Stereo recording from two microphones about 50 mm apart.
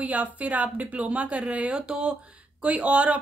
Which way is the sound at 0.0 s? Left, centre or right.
Right.